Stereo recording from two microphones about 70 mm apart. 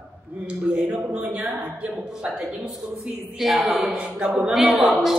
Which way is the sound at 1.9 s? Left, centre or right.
Centre.